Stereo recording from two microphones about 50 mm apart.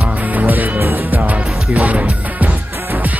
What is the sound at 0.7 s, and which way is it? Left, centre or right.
Music, right.